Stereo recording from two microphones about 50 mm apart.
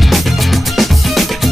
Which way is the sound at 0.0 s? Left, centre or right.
Centre.